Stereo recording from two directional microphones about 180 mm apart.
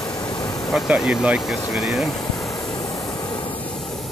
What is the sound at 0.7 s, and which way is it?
Speech, centre (ahead or behind).